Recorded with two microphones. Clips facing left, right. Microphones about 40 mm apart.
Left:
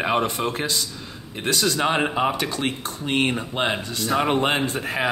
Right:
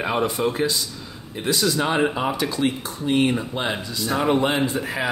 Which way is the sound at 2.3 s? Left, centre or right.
Left.